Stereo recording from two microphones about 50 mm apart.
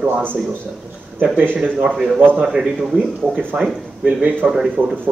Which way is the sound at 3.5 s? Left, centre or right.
Right.